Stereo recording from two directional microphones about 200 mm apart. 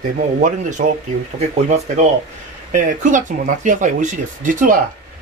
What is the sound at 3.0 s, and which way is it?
Speech, 40° right (ahead or behind).